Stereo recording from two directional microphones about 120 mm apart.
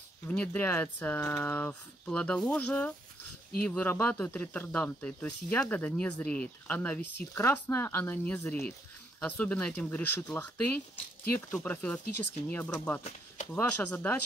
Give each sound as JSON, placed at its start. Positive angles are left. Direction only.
{"t": 0.4, "sound": "speech", "side_deg": 15}